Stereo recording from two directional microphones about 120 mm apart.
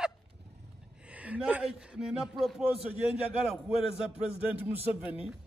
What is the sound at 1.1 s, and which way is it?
A man's voice, 10° right (ahead or behind).